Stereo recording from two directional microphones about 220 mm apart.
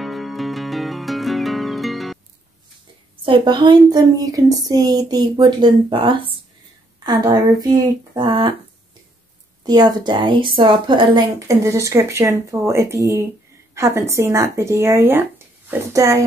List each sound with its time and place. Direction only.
0.0 s music: centre (ahead or behind)
3.3 s a woman's voice: 20° right (ahead or behind)
9.6 s a woman's voice: 20° right (ahead or behind)